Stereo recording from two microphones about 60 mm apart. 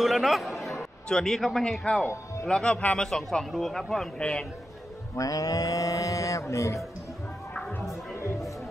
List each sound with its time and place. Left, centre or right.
0.0 s speech: centre
1.0 s a man's voice: centre
3.1 s speech: centre
5.1 s music: left